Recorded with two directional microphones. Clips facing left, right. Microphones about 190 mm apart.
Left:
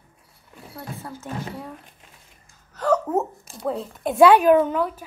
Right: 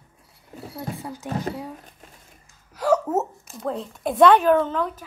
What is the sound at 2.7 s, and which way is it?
A woman's voice, 10° right (ahead or behind).